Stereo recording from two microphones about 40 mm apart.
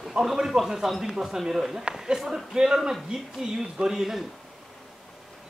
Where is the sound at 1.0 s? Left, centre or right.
Centre.